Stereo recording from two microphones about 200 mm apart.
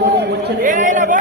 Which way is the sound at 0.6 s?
40° right (ahead or behind).